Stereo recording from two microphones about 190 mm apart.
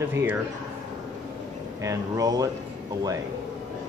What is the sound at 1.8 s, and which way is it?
Speech, 20° right (ahead or behind).